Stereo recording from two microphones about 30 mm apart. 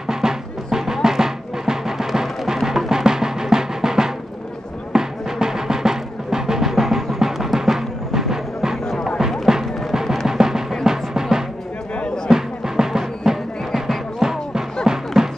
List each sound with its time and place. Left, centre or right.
0.0 s music: centre